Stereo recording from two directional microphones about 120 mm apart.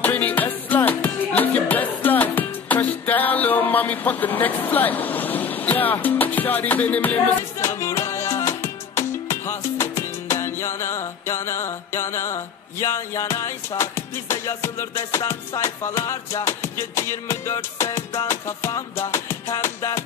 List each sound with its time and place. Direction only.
0.0 s music: 15° left (ahead or behind)